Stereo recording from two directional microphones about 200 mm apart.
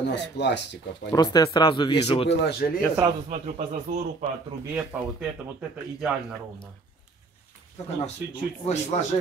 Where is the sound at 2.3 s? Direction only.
55° left (ahead or behind).